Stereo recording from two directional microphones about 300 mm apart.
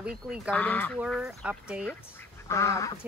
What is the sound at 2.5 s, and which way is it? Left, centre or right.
Speech, centre.